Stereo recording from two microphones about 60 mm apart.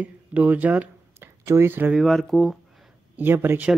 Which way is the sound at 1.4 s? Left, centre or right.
Right.